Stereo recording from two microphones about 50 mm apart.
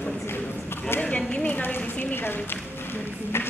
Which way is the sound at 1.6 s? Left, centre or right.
Left.